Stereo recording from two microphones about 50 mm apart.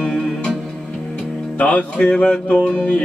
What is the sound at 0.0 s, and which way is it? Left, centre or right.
Music, centre.